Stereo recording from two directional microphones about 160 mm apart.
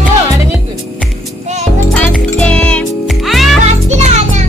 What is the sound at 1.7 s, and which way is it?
Music, 10° left (ahead or behind).